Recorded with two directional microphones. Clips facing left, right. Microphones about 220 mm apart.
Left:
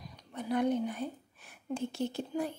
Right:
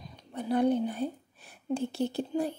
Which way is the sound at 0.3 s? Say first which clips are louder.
Right 4 dB; 30° right (ahead or behind).